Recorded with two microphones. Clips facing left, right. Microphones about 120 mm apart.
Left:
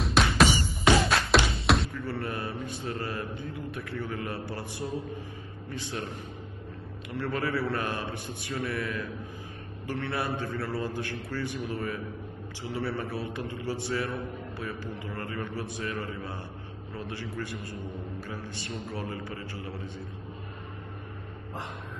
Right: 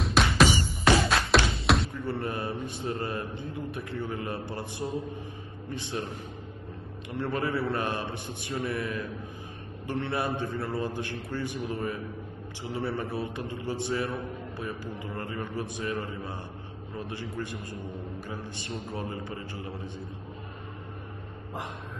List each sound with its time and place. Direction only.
0.0 s music: centre (ahead or behind)
2.0 s a man's voice: 20° right (ahead or behind)
7.1 s a man's voice: 20° right (ahead or behind)